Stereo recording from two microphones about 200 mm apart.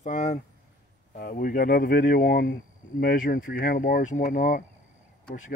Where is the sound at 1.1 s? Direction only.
45° left (ahead or behind).